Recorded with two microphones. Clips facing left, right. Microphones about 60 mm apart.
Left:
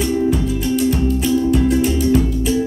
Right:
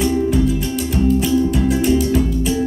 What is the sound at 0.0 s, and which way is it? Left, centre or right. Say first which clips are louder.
Music: right 1 dB; centre.